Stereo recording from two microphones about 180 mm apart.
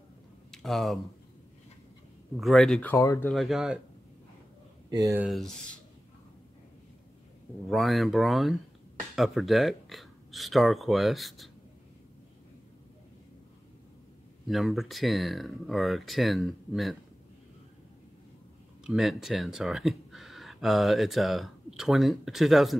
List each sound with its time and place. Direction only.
0.5 s a sound: centre (ahead or behind)
2.3 s speech: centre (ahead or behind)
3.3 s speech: centre (ahead or behind)
4.9 s speech: 20° right (ahead or behind)
5.2 s speech: centre (ahead or behind)
7.7 s speech: centre (ahead or behind)
14.5 s speech: centre (ahead or behind)
18.9 s speech: centre (ahead or behind)